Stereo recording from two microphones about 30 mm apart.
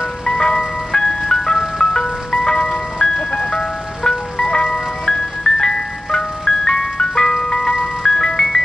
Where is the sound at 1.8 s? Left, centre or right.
Centre.